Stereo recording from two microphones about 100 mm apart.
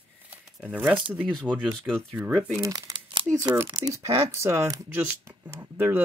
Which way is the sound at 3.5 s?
30° right (ahead or behind).